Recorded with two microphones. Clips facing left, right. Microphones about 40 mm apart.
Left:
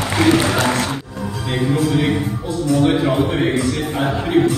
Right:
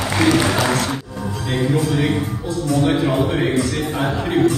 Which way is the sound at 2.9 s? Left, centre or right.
Centre.